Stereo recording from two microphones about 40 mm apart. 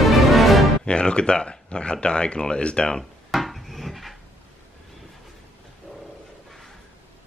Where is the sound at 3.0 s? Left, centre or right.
Centre.